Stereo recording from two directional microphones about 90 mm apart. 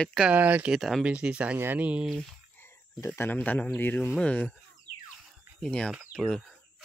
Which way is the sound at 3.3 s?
20° left (ahead or behind).